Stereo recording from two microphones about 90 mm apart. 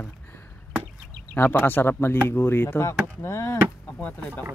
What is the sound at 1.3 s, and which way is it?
Speech, 20° left (ahead or behind).